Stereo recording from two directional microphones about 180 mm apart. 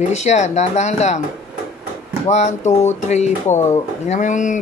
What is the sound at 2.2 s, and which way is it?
Speech, 40° left (ahead or behind).